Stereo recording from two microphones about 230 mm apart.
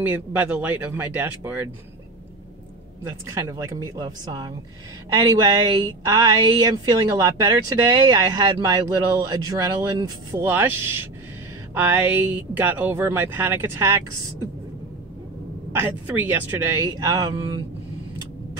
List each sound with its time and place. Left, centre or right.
0.0 s speech: centre
3.0 s speech: centre
15.7 s speech: centre